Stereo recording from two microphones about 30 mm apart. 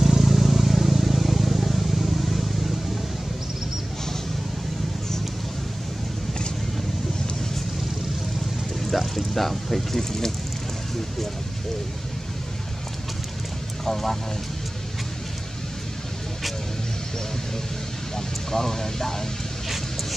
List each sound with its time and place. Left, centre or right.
0.0 s vehicle: centre
8.9 s a sound: centre
9.9 s speech: centre
18.1 s speech: centre
19.7 s vehicle: centre